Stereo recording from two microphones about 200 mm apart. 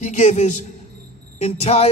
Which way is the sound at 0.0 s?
35° left (ahead or behind).